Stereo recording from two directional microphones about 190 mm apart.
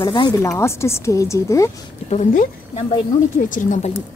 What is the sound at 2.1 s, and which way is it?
Speech, 40° left (ahead or behind).